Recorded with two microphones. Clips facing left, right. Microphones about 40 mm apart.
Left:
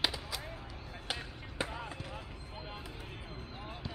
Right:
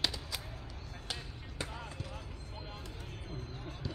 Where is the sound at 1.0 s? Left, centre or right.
Centre.